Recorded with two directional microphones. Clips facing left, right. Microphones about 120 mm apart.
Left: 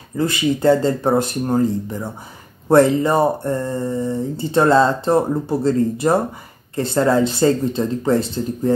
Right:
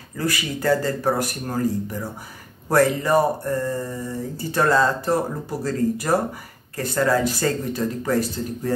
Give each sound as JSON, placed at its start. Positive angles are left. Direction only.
{"t": 0.2, "sound": "speech", "side_deg": 25}